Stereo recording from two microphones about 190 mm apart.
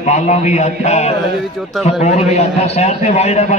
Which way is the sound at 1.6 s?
Centre (ahead or behind).